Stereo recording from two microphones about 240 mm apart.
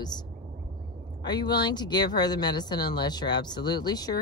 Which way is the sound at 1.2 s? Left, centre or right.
Centre.